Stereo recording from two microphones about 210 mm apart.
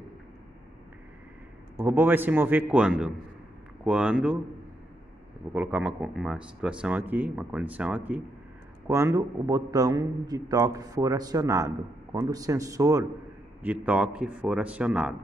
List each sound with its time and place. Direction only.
1.8 s a man's voice: 10° right (ahead or behind)
5.5 s a man's voice: 5° right (ahead or behind)